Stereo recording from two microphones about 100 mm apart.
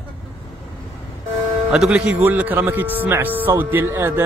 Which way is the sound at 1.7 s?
5° right (ahead or behind).